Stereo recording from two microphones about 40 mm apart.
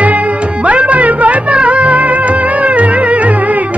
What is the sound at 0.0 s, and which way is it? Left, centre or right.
Music, right.